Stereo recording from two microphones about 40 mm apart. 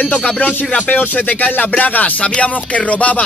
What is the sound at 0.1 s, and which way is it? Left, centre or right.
Speech, left.